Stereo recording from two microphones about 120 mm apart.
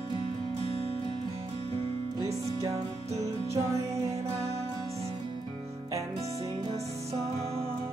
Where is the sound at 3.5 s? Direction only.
25° right (ahead or behind).